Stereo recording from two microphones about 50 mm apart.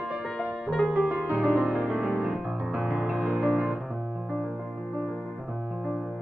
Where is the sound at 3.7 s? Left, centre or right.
Centre.